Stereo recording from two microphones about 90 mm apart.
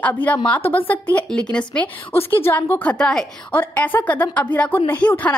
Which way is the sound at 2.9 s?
5° left (ahead or behind).